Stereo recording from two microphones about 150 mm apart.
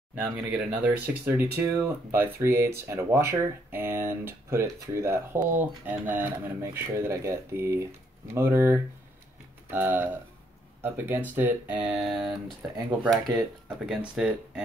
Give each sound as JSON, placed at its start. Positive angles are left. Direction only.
{"t": 0.1, "sound": "speech", "side_deg": -10}